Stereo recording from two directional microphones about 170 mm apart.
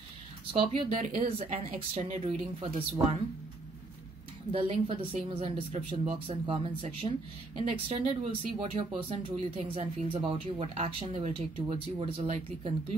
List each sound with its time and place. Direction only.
0.5 s speech: 35° right (ahead or behind)
0.8 s speech: 45° right (ahead or behind)
4.5 s speech: 35° right (ahead or behind)